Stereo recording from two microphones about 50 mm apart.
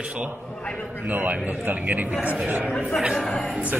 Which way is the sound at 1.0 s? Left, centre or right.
Right.